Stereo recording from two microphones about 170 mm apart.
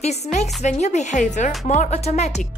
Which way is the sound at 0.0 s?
40° left (ahead or behind).